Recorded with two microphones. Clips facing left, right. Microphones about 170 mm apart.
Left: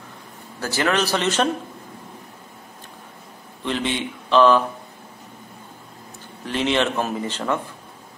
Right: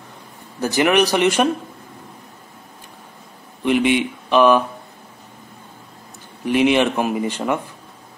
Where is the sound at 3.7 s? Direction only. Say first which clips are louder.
Right 8 dB; 15° right (ahead or behind).